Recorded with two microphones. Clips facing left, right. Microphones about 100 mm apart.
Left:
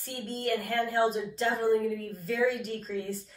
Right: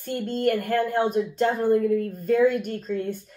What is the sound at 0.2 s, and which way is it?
Speech, 50° right (ahead or behind).